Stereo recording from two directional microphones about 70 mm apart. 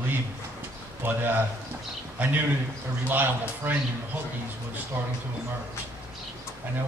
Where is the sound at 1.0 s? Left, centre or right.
Right.